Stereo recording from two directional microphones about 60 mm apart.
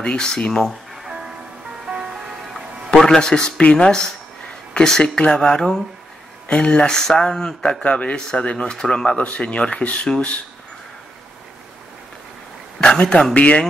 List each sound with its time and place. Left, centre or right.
0.0 s speech: centre
1.9 s music: right
3.0 s speech: centre
12.8 s speech: centre